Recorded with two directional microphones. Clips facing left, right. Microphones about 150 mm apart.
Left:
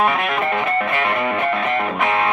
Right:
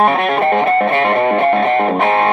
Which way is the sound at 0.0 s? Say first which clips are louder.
Right 6 dB; 35° right (ahead or behind).